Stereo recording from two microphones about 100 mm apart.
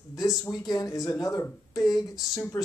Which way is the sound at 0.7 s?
40° left (ahead or behind).